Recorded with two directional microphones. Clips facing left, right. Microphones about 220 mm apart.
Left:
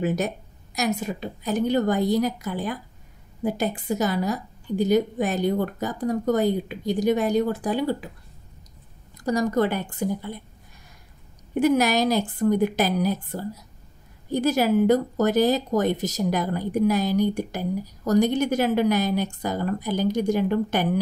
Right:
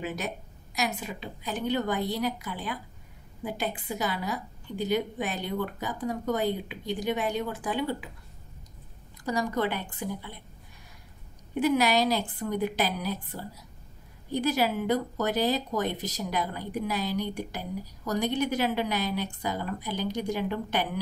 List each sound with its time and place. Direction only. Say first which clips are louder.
0.0 s speech: left 9 dB; 45° left (ahead or behind)
9.2 s speech: left 6 dB; 45° left (ahead or behind)
11.6 s speech: left 4 dB; 45° left (ahead or behind)